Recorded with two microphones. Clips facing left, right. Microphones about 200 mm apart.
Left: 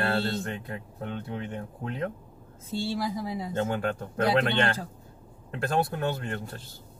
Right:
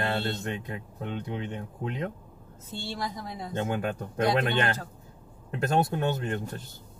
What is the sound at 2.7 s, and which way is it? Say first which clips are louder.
Speech: left 5 dB; 10° left (ahead or behind).